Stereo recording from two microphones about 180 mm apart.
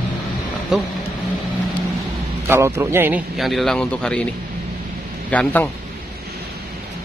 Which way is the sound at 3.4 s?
Centre (ahead or behind).